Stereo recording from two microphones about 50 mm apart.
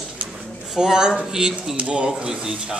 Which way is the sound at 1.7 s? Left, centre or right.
Right.